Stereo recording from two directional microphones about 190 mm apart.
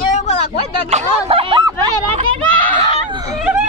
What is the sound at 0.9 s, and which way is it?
Speech, 35° right (ahead or behind).